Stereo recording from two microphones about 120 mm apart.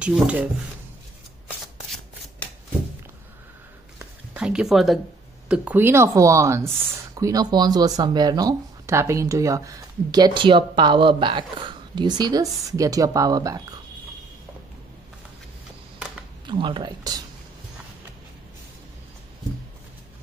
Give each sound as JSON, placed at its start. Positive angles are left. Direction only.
{"t": 0.0, "sound": "speech", "side_deg": -10}
{"t": 4.3, "sound": "speech", "side_deg": -10}
{"t": 5.5, "sound": "speech", "side_deg": -15}
{"t": 16.4, "sound": "speech", "side_deg": -45}